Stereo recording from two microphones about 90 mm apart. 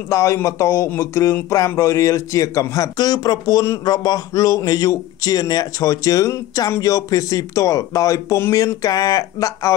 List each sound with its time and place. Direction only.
0.1 s a man's voice: 35° left (ahead or behind)